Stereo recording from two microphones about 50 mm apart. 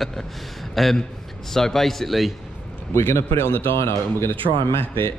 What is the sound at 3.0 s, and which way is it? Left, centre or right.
Speech, left.